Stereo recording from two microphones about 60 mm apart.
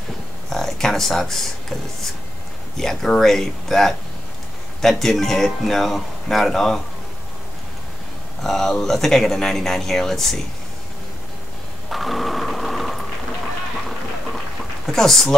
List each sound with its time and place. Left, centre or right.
0.5 s speech: centre
2.8 s speech: centre
8.4 s speech: centre
11.9 s a sound: centre
14.9 s speech: centre